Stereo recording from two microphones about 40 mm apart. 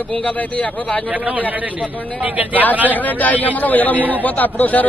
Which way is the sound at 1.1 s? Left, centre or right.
Right.